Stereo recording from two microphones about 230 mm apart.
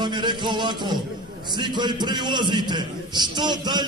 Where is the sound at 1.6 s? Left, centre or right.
Centre.